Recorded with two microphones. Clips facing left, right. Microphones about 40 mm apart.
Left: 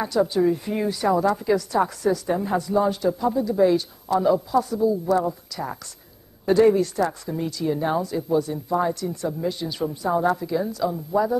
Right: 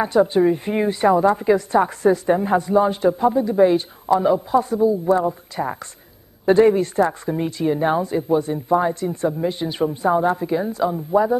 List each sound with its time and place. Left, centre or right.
0.0 s a woman's voice: right